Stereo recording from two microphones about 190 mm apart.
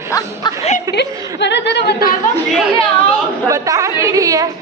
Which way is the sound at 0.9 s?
70° left (ahead or behind).